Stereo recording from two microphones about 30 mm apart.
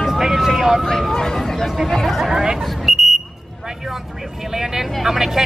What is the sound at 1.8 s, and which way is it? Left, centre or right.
Speech, centre.